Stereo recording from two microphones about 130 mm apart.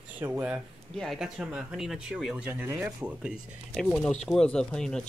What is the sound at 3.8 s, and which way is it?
Speech, 5° left (ahead or behind).